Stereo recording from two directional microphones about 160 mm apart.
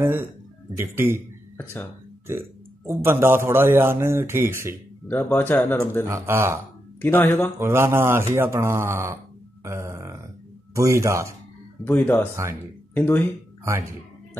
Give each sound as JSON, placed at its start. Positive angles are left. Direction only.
{"t": 0.0, "sound": "a man's voice", "side_deg": -15}
{"t": 1.6, "sound": "speech", "side_deg": 10}
{"t": 2.9, "sound": "a man's voice", "side_deg": -15}
{"t": 5.0, "sound": "speech", "side_deg": 10}
{"t": 6.0, "sound": "a man's voice", "side_deg": -15}
{"t": 7.0, "sound": "speech", "side_deg": 10}
{"t": 7.5, "sound": "a man's voice", "side_deg": -15}
{"t": 9.7, "sound": "a sound", "side_deg": -20}
{"t": 10.7, "sound": "speech", "side_deg": -20}
{"t": 11.8, "sound": "speech", "side_deg": 10}
{"t": 12.4, "sound": "speech", "side_deg": -20}
{"t": 12.9, "sound": "speech", "side_deg": 10}